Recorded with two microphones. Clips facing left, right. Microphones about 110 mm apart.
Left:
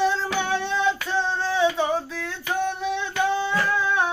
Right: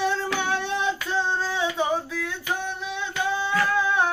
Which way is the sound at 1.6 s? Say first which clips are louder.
Left 6 dB; 10° right (ahead or behind).